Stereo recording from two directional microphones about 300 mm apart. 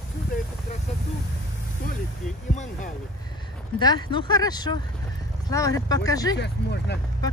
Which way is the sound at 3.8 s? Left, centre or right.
Centre.